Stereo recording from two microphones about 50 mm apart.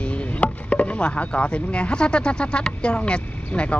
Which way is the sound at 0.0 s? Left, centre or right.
Left.